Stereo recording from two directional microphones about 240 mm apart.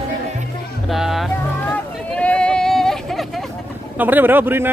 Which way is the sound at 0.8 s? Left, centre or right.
Centre.